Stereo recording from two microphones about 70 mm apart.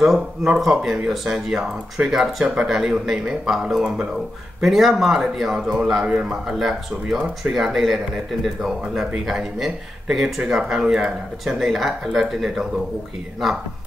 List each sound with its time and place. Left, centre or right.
0.0 s speech: centre
2.4 s speech: centre
2.7 s speech: centre